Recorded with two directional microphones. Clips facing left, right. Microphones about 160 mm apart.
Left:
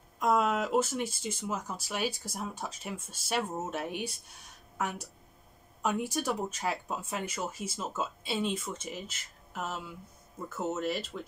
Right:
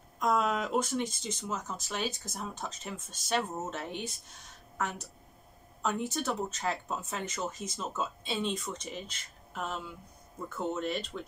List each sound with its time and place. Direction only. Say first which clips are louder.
0.2 s speech: left 2 dB; 5° left (ahead or behind)